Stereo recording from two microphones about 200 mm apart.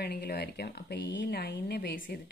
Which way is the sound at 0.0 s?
55° left (ahead or behind).